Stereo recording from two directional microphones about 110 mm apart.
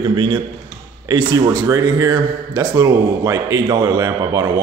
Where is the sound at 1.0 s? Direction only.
35° right (ahead or behind).